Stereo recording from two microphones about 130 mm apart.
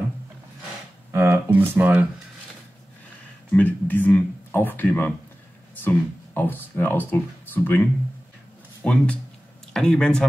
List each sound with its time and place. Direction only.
1.1 s speech: 20° right (ahead or behind)
3.5 s speech: 15° left (ahead or behind)
8.8 s speech: 10° left (ahead or behind)